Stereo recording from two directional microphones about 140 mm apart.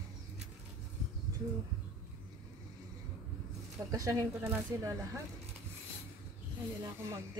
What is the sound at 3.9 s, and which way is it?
Speech, 25° right (ahead or behind).